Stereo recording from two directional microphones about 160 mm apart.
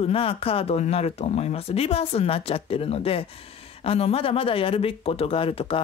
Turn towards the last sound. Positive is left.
turn(degrees=35)  # may be behind; listen again after turning